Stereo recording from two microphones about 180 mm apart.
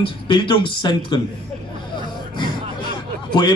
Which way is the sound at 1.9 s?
25° left (ahead or behind).